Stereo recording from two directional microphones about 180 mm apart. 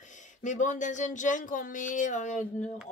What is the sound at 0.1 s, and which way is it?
Speech, 45° left (ahead or behind).